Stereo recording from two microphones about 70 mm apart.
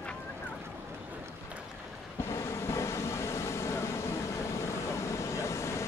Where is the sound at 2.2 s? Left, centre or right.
Left.